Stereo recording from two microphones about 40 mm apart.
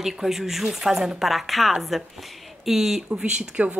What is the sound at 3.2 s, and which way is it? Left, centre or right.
Speech, right.